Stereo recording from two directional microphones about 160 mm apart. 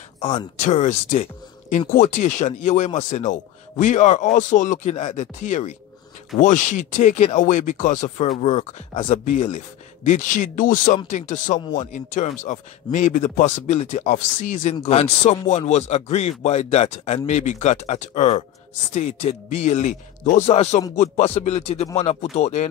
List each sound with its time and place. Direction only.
0.2 s speech: 35° left (ahead or behind)
0.6 s a man's voice: 50° left (ahead or behind)